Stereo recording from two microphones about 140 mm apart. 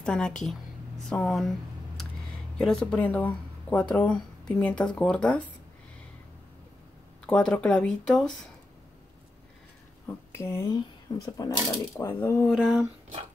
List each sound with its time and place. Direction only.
0.0 s speech: 5° left (ahead or behind)
2.5 s speech: 5° left (ahead or behind)
7.2 s speech: 5° left (ahead or behind)
10.0 s speech: 20° left (ahead or behind)
12.4 s speech: centre (ahead or behind)